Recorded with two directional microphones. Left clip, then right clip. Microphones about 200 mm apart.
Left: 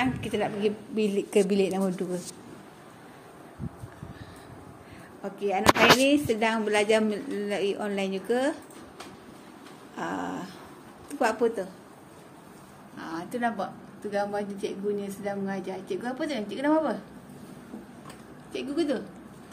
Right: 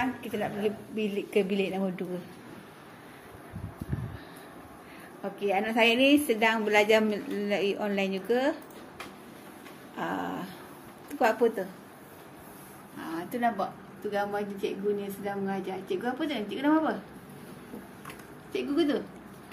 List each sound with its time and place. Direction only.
0.0 s a woman's voice: 30° left (ahead or behind)
5.2 s speech: centre (ahead or behind)
9.9 s dog: 5° left (ahead or behind)
11.1 s speech: 5° left (ahead or behind)
13.1 s speech: 5° left (ahead or behind)
18.5 s speech: centre (ahead or behind)